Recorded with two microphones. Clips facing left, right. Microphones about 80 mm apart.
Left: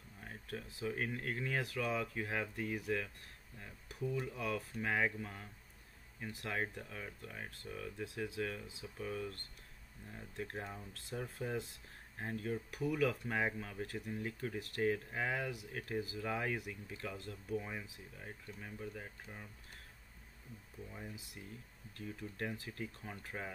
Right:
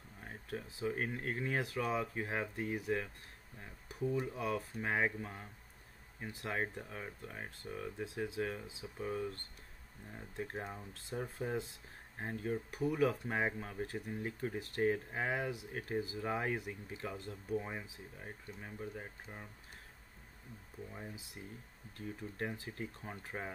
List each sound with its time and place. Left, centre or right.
0.2 s speech: right
20.9 s speech: centre